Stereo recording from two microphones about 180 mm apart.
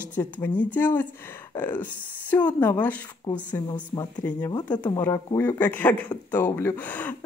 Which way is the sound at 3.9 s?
20° left (ahead or behind).